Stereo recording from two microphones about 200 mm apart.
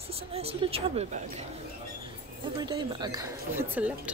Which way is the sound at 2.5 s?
20° right (ahead or behind).